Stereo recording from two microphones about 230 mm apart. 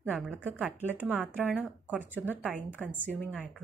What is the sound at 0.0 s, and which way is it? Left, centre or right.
A woman's voice, centre.